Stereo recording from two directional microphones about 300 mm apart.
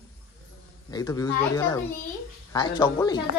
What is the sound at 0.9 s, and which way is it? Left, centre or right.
Speech, centre.